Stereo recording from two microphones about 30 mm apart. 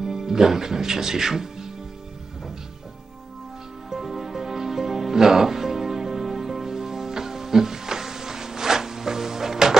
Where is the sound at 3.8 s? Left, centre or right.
Centre.